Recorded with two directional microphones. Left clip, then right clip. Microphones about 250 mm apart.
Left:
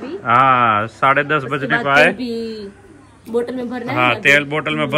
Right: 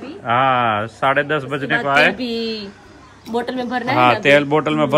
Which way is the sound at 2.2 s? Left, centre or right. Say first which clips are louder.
Right 2 dB; right.